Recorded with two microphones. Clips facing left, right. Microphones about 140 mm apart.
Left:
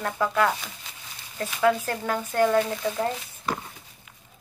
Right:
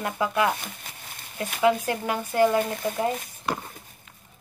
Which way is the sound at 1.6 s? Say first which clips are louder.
Right 1 dB; 15° right (ahead or behind).